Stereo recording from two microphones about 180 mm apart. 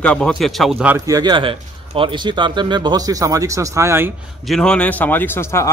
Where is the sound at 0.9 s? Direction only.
20° right (ahead or behind).